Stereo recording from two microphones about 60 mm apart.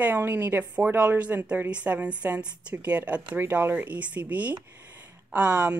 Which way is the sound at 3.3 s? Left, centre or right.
Right.